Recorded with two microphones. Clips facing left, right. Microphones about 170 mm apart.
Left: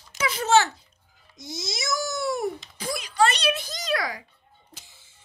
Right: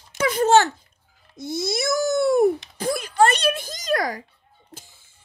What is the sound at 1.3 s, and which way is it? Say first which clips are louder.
A child's voice: right 9 dB; 55° right (ahead or behind).